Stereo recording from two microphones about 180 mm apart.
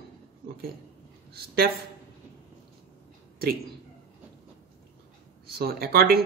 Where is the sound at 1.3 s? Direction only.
60° right (ahead or behind).